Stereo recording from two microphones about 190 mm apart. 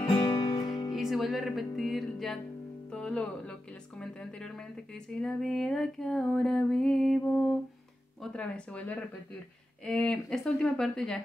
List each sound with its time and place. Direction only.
0.0 s music: 20° left (ahead or behind)
0.9 s speech: centre (ahead or behind)
2.9 s a sound: 5° left (ahead or behind)